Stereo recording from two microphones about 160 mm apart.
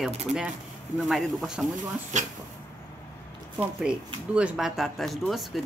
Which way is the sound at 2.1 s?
50° right (ahead or behind).